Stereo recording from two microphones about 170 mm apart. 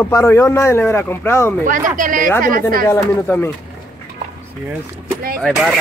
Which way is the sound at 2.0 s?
55° right (ahead or behind).